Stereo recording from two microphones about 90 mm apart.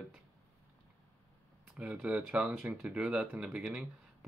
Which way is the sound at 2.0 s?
15° right (ahead or behind).